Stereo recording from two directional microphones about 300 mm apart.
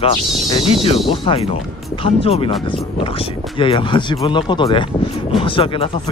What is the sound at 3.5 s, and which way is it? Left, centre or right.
Speech, centre.